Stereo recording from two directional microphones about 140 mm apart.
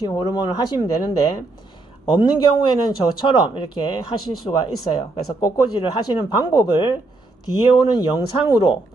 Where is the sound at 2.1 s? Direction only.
35° left (ahead or behind).